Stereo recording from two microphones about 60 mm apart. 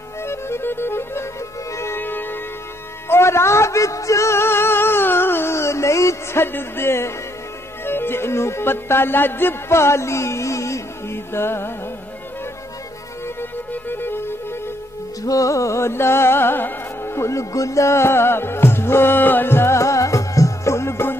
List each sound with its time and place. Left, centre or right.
0.2 s music: left
3.1 s music: left
6.4 s speech: left
7.8 s music: left
13.4 s music: left
15.2 s music: left